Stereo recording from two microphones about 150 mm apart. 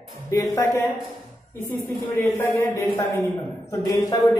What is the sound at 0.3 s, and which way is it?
Speech, 20° left (ahead or behind).